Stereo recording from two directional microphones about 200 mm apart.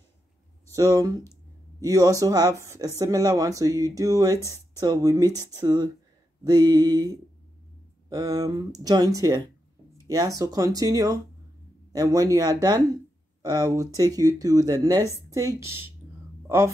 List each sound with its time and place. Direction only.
0.7 s a man's voice: 15° right (ahead or behind)